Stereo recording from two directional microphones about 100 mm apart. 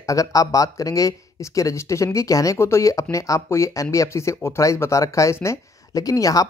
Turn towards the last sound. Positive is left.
turn(degrees=35)  # may be behind; listen again after turning